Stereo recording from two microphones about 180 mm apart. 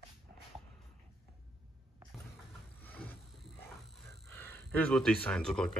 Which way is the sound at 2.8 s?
10° left (ahead or behind).